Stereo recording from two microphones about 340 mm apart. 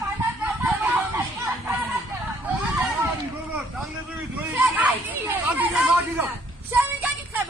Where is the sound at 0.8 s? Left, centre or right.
Centre.